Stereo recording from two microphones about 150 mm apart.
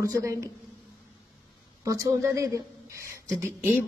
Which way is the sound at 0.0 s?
20° right (ahead or behind).